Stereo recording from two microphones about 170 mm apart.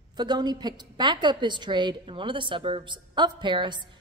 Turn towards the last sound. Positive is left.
turn(degrees=-25)  # may be behind; listen again after turning